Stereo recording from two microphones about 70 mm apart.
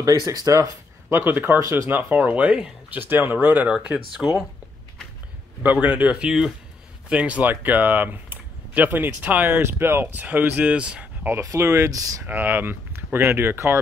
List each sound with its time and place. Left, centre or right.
0.0 s speech: right
1.1 s speech: right
3.6 s speech: centre
5.6 s speech: right
6.2 s speech: centre
11.4 s speech: right
11.9 s speech: right
12.3 s speech: right